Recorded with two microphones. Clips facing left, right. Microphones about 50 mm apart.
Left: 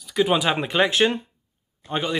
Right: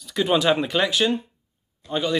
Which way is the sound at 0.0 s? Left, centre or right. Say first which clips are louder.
Even; centre.